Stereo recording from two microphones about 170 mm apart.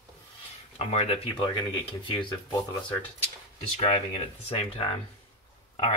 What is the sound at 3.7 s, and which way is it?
Speech, 35° left (ahead or behind).